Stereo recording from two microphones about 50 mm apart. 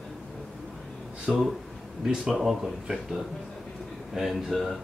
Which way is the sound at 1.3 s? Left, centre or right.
Centre.